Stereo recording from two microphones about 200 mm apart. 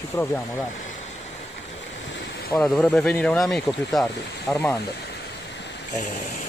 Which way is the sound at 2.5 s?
5° left (ahead or behind).